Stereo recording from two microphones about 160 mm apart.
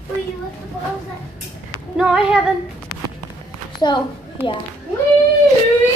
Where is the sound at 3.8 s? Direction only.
25° left (ahead or behind).